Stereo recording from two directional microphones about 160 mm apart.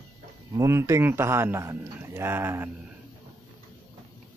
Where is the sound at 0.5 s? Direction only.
15° right (ahead or behind).